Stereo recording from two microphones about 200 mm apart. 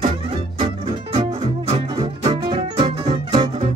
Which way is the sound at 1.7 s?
20° right (ahead or behind).